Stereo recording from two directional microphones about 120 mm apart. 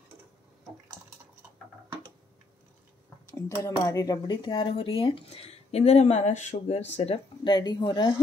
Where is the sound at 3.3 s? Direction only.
25° left (ahead or behind); by 7.2 s 65° left (ahead or behind).